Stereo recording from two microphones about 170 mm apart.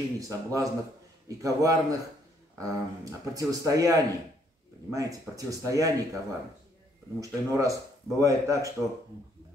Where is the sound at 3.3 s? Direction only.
20° right (ahead or behind).